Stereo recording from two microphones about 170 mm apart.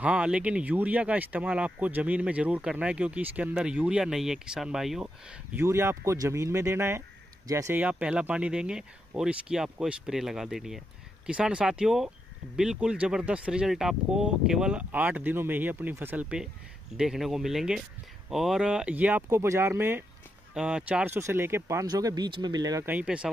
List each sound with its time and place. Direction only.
0.0 s speech: 5° right (ahead or behind); by 22.8 s 20° right (ahead or behind)
22.8 s speech: 10° right (ahead or behind)